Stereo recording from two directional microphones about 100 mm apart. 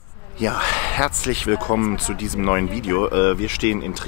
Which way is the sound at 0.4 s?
15° left (ahead or behind).